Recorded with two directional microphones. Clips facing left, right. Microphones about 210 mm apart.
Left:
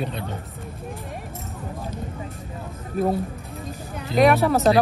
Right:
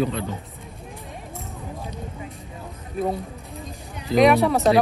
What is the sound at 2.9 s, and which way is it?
Speech, centre (ahead or behind).